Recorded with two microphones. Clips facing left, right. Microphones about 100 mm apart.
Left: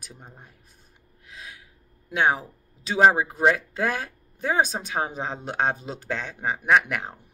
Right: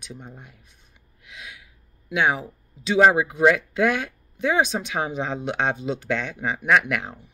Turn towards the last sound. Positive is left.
turn(degrees=30)  # may be behind; listen again after turning